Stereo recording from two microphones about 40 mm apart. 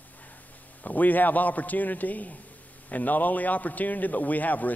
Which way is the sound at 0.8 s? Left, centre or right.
Left.